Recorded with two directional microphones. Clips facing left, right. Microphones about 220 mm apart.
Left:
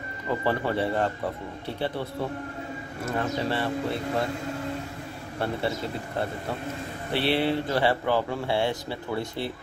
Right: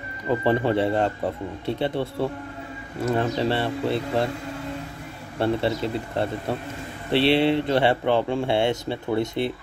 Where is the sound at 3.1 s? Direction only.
25° right (ahead or behind).